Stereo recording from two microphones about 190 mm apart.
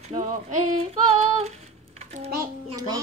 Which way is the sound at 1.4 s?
35° right (ahead or behind).